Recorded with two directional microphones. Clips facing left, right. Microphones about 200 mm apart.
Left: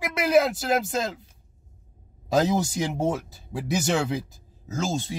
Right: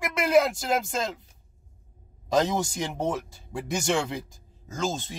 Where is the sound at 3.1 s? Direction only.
5° left (ahead or behind).